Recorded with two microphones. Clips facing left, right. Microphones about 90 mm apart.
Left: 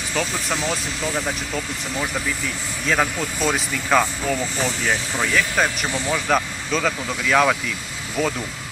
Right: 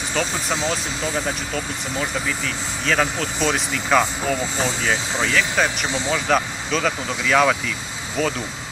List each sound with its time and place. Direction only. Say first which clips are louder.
0.2 s speech: right 1 dB; 20° right (ahead or behind)
2.9 s speech: even; 10° left (ahead or behind)
4.6 s speech: right 1 dB; 20° right (ahead or behind)
5.3 s speech: even; 5° left (ahead or behind)
5.9 s speech: right 1 dB; 20° right (ahead or behind)
6.1 s speech: right 1 dB; 5° left (ahead or behind)